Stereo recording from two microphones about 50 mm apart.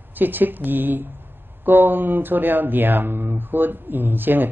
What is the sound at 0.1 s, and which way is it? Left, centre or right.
Speech, right.